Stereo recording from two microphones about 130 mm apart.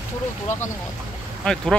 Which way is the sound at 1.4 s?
5° left (ahead or behind).